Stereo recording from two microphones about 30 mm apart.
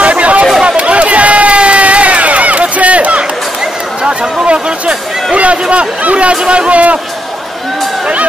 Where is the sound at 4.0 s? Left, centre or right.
Right.